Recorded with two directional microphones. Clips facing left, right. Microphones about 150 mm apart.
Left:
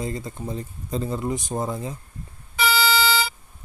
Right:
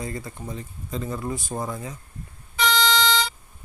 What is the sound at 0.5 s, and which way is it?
Speech, 35° left (ahead or behind).